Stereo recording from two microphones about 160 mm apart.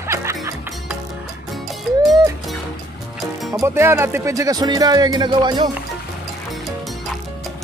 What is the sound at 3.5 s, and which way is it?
Speech, 15° right (ahead or behind).